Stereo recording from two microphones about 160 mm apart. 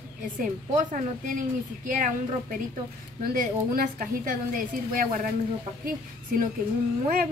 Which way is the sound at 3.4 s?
55° right (ahead or behind).